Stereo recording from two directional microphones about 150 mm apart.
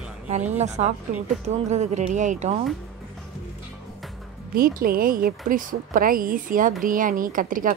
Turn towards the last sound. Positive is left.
turn(degrees=-65)  # may be behind; listen again after turning